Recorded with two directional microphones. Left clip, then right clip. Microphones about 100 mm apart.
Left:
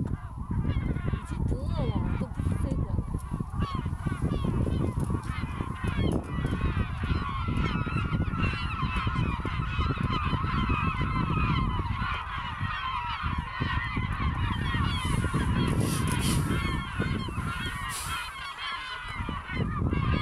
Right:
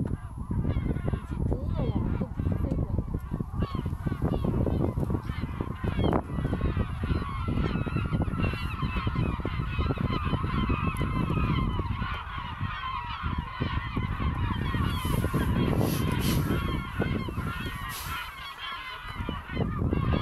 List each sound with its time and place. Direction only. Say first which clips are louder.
1.8 s a sound: left 1 dB; 30° left (ahead or behind)
4.3 s honk: right 4 dB; 25° left (ahead or behind)
9.8 s goose: even; 25° left (ahead or behind)
13.6 s goose: left 4 dB; 15° left (ahead or behind)
16.2 s honk: even; 5° left (ahead or behind)
16.6 s goose: even; 15° left (ahead or behind)
19.6 s goose: right 3 dB; 15° left (ahead or behind)